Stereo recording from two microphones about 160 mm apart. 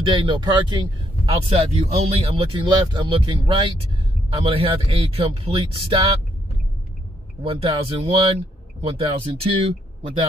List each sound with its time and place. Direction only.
0.0 s speech: 30° right (ahead or behind)
7.4 s speech: 40° right (ahead or behind)